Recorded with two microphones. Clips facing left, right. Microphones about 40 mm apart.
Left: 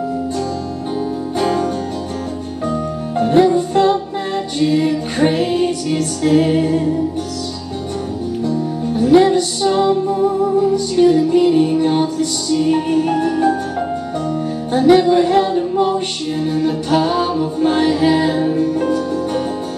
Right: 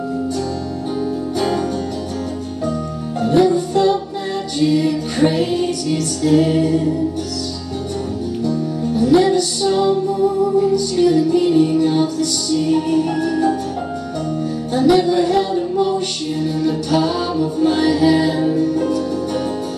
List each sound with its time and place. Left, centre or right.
1.4 s music: left
3.2 s music: left
8.5 s music: left